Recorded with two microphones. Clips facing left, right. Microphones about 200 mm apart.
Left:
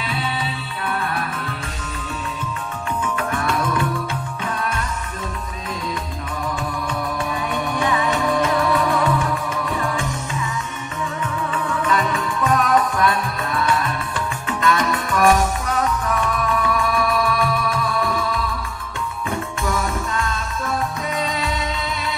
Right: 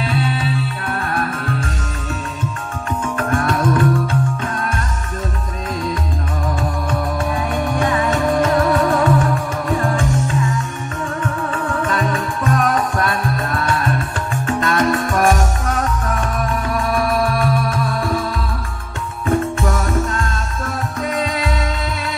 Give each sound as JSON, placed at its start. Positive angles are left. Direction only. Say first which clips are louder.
{"t": 0.0, "sound": "music", "louder": "right 6 dB", "side_deg": -50}
{"t": 3.2, "sound": "music", "louder": "right 6 dB", "side_deg": -50}
{"t": 6.9, "sound": "music", "louder": "right 4 dB", "side_deg": -50}
{"t": 19.2, "sound": "music", "louder": "right 8 dB", "side_deg": -50}